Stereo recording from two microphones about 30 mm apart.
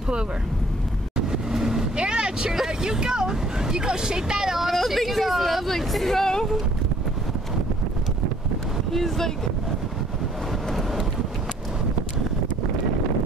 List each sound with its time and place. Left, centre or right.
1.1 s vehicle: right
4.6 s a sound: centre
5.7 s hubbub: centre
8.9 s speech: centre